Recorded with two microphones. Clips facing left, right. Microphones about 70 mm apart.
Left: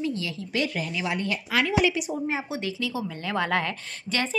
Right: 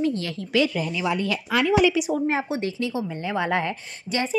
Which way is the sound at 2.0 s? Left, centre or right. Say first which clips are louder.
Right 6 dB; right.